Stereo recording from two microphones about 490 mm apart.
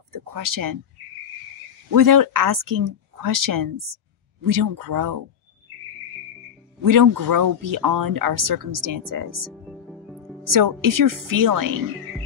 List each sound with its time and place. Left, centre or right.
0.1 s speech: right
1.9 s speech: right
6.8 s speech: right
9.5 s music: centre
10.5 s speech: right